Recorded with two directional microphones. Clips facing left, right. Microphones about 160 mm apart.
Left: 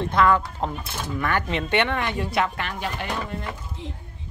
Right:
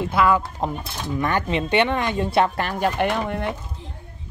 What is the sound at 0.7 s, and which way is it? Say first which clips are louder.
Speech: right 3 dB; 20° right (ahead or behind).